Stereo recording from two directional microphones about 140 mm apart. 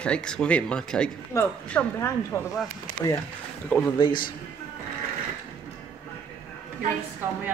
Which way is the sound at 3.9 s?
35° left (ahead or behind).